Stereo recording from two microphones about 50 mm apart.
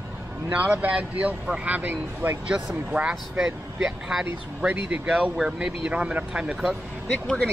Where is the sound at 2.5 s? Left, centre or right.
Centre.